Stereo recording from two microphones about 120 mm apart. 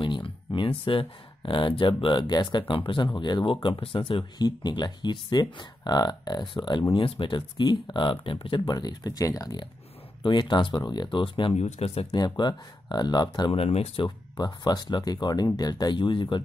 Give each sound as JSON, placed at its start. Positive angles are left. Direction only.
{"t": 0.0, "sound": "speech", "side_deg": 45}
{"t": 11.5, "sound": "speech", "side_deg": 65}
{"t": 12.2, "sound": "speech", "side_deg": 35}
{"t": 13.6, "sound": "speech", "side_deg": 55}
{"t": 14.0, "sound": "speech", "side_deg": 35}